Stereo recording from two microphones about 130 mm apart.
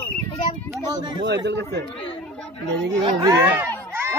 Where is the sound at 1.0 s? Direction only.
35° right (ahead or behind).